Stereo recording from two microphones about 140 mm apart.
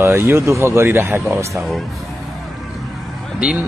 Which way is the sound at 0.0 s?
20° right (ahead or behind).